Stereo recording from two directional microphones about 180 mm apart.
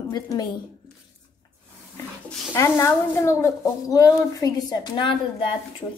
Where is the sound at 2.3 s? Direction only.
15° left (ahead or behind).